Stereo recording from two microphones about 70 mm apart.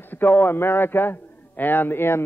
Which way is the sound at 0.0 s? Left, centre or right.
Left.